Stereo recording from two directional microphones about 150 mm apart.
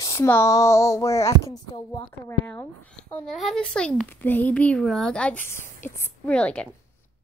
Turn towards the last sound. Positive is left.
turn(degrees=5)  # may be behind; listen again after turning